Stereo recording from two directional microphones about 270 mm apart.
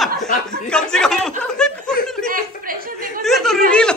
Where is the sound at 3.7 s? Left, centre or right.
Centre.